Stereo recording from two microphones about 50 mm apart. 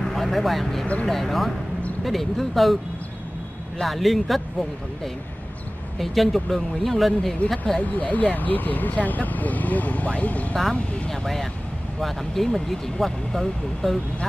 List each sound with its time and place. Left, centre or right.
0.0 s speech: centre
3.8 s speech: centre
7.8 s speech: left
10.5 s speech: centre